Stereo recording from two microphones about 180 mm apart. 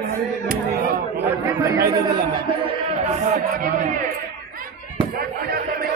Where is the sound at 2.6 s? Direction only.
40° right (ahead or behind).